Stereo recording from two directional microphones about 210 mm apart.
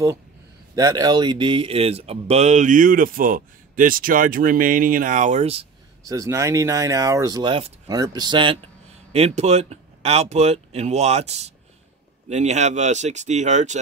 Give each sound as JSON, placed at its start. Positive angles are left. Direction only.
{"t": 0.7, "sound": "speech", "side_deg": -15}
{"t": 6.0, "sound": "speech", "side_deg": -15}